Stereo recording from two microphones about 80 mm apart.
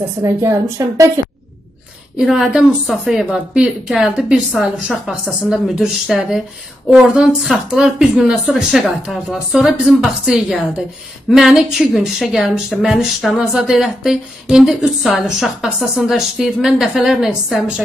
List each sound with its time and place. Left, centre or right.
0.2 s a woman's voice: right
2.1 s a woman's voice: centre